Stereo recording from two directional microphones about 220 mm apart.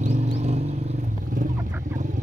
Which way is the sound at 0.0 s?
30° right (ahead or behind).